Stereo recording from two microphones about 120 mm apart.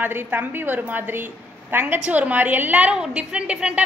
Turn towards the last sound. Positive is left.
turn(degrees=-10)  # may be behind; listen again after turning